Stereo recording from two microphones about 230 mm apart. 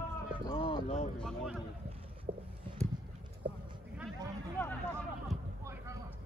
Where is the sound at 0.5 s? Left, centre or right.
Left.